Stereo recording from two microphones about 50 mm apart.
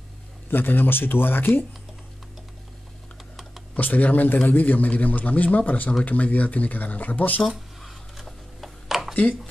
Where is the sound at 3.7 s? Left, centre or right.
Left.